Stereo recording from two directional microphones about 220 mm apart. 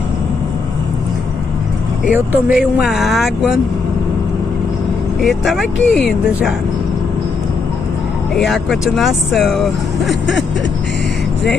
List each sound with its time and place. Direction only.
2.0 s speech: 5° right (ahead or behind)
5.2 s speech: centre (ahead or behind)
8.4 s speech: centre (ahead or behind)